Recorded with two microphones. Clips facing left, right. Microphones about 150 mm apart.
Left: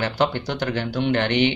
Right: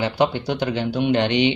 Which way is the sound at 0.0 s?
15° right (ahead or behind).